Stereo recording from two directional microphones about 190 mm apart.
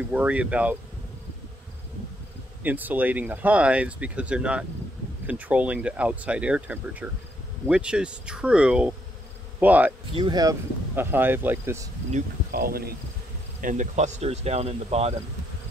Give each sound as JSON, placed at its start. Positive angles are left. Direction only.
{"t": 0.1, "sound": "speech", "side_deg": -10}
{"t": 2.6, "sound": "speech", "side_deg": -10}
{"t": 10.1, "sound": "speech", "side_deg": -20}
{"t": 12.1, "sound": "speech", "side_deg": -45}